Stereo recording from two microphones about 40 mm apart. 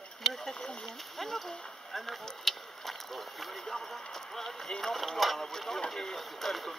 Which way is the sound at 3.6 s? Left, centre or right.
Centre.